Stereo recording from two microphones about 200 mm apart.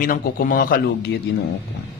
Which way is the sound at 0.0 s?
45° left (ahead or behind).